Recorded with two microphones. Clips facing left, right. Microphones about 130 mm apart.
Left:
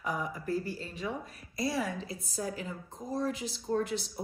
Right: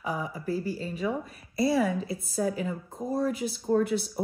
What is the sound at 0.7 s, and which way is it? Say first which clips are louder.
A woman's voice: right 7 dB; 5° right (ahead or behind).